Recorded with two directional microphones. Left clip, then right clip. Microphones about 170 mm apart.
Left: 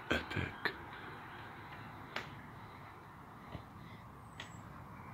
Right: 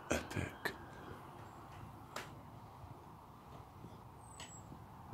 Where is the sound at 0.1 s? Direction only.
5° right (ahead or behind).